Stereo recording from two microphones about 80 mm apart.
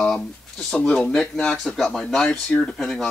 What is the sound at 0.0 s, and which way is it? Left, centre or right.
Speech, centre.